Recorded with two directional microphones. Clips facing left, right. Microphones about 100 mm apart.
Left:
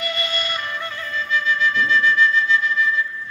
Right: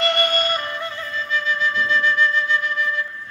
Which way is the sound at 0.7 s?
25° right (ahead or behind).